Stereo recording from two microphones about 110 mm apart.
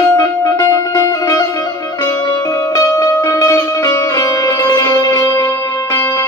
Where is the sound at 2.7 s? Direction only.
30° left (ahead or behind).